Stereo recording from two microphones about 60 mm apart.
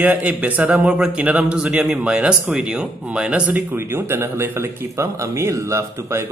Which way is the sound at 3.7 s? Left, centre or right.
Right.